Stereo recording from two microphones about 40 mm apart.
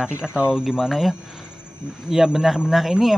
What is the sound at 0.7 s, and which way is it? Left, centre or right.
Speech, centre.